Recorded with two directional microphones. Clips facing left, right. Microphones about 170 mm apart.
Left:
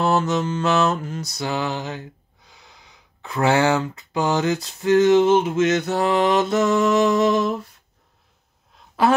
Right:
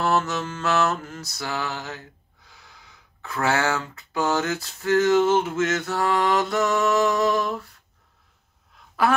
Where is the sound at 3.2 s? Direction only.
20° left (ahead or behind).